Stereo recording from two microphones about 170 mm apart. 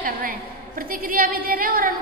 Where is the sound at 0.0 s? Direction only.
55° right (ahead or behind).